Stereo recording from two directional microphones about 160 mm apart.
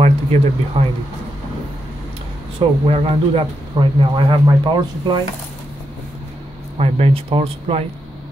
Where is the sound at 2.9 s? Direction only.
35° right (ahead or behind).